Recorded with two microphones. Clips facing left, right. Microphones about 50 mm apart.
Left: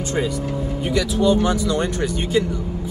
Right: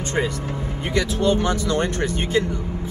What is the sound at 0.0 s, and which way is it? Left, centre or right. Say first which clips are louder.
Speech: left 1 dB; right.